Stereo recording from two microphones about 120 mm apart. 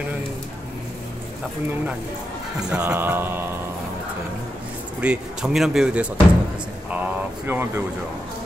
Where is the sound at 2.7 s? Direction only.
10° right (ahead or behind).